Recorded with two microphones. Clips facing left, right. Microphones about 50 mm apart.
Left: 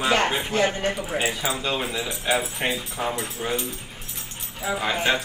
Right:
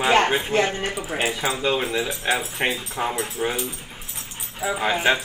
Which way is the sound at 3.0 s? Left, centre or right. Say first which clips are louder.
Right 3 dB; centre.